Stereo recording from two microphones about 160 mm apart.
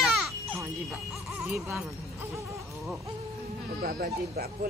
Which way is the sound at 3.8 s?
70° right (ahead or behind).